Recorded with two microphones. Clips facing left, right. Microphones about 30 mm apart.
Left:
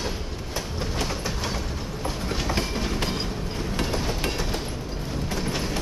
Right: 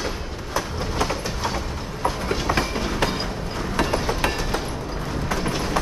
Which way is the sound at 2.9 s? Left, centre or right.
Right.